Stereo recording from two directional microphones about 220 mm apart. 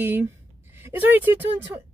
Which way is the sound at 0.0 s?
10° right (ahead or behind).